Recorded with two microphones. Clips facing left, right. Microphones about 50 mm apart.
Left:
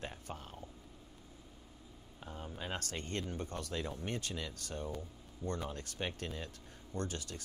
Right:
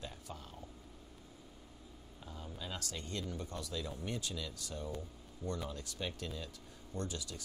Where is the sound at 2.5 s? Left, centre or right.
Left.